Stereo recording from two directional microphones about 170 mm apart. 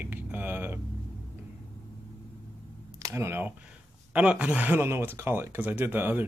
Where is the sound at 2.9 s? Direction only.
15° right (ahead or behind).